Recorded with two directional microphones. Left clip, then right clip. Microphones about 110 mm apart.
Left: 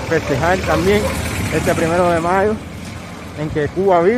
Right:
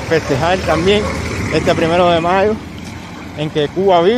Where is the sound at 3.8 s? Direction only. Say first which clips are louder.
Right 2 dB; centre (ahead or behind).